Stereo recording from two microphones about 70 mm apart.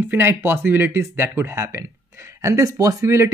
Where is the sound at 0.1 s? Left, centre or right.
Right.